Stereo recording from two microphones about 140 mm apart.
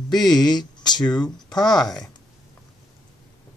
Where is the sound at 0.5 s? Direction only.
30° left (ahead or behind).